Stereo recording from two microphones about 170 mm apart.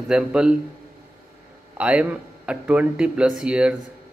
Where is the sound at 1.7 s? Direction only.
5° right (ahead or behind).